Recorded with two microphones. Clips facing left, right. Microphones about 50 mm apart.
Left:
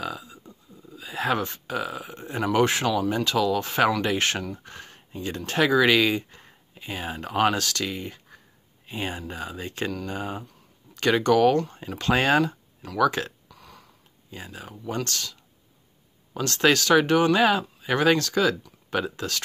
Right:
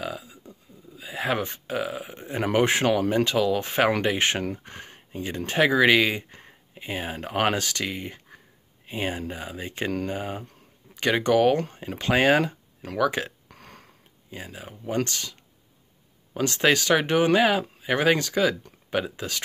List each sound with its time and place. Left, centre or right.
0.0 s a sound: centre
1.4 s speech: right
4.4 s speech: right
8.8 s speech: centre
13.5 s burping: right
14.3 s speech: centre
16.3 s speech: right